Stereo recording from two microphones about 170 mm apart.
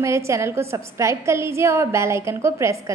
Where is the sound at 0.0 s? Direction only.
15° right (ahead or behind).